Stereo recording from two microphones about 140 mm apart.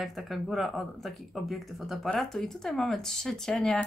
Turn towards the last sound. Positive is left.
turn(degrees=5)  # may be behind; listen again after turning